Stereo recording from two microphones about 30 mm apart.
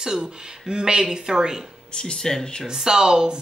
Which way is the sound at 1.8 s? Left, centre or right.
Left.